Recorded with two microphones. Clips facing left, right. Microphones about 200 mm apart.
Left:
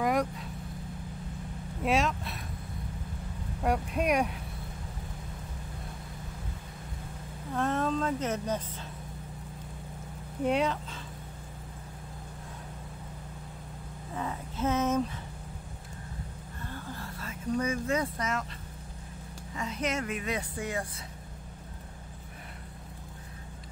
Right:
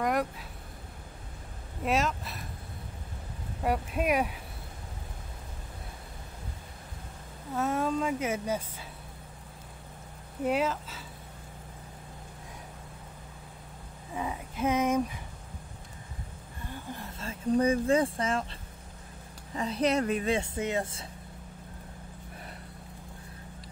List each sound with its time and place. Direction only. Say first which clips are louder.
0.0 s vehicle: left 1 dB; centre (ahead or behind)
1.9 s speech: left 1 dB; centre (ahead or behind)
3.6 s speech: even; centre (ahead or behind)
7.5 s speech: even; 10° right (ahead or behind)
10.4 s speech: left 1 dB; 5° right (ahead or behind)
14.1 s a sound: right 1 dB; 10° right (ahead or behind)
16.7 s a sound: right 1 dB; 20° right (ahead or behind)
17.3 s speech: right 5 dB; 30° right (ahead or behind)
19.5 s speech: right 5 dB; 35° right (ahead or behind)